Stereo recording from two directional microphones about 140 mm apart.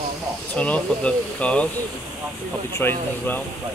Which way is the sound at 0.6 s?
10° left (ahead or behind).